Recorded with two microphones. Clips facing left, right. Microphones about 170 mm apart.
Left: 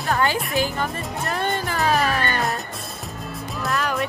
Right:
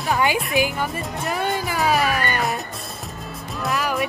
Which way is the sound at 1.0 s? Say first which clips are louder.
Right 1 dB; centre (ahead or behind).